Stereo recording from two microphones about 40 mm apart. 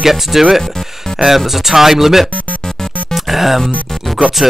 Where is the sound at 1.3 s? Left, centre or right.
Centre.